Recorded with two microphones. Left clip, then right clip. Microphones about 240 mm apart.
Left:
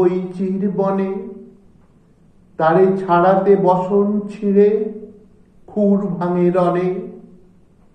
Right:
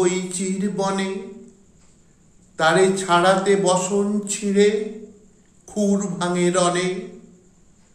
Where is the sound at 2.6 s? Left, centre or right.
Right.